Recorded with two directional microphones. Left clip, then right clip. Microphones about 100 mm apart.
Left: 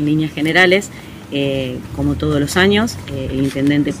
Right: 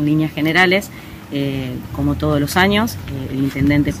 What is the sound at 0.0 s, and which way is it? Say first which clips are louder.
Speech: even; 30° right (ahead or behind).